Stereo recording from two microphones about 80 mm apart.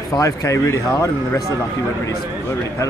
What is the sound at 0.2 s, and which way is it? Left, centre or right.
Speech, left.